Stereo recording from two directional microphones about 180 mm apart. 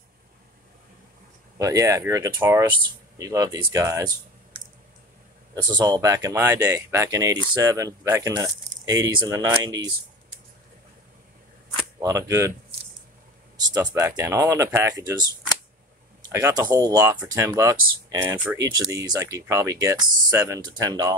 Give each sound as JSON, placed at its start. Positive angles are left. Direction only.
{"t": 1.6, "sound": "speech", "side_deg": -20}
{"t": 5.6, "sound": "speech", "side_deg": -25}
{"t": 12.0, "sound": "speech", "side_deg": -15}
{"t": 13.6, "sound": "speech", "side_deg": -20}
{"t": 16.3, "sound": "speech", "side_deg": -15}